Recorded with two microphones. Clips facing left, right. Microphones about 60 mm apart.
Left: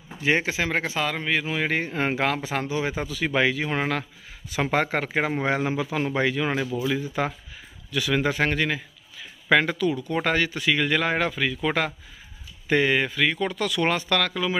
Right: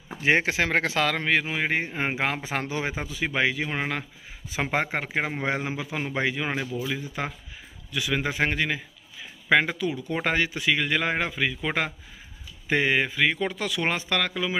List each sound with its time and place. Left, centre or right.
0.2 s speech: right
1.4 s speech: right
2.6 s speech: right
2.9 s speech: centre
3.3 s speech: centre
4.5 s speech: centre
7.9 s speech: centre